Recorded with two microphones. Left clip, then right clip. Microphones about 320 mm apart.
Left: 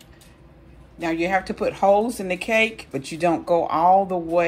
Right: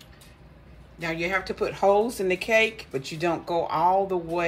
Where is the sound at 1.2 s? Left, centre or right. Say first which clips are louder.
Left 4 dB; centre.